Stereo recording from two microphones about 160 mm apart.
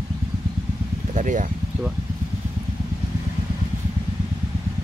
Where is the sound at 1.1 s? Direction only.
50° right (ahead or behind).